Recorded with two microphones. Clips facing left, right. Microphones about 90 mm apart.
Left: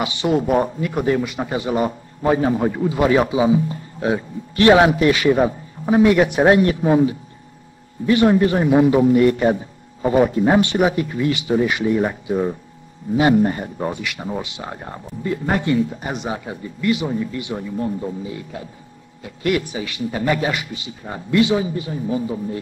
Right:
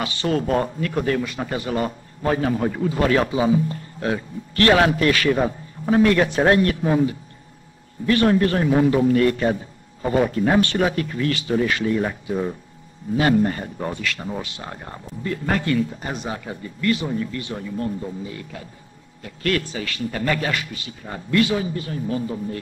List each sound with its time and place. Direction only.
0.0 s speech: 15° left (ahead or behind)